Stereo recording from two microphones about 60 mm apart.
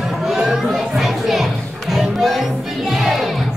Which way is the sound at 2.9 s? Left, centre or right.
Centre.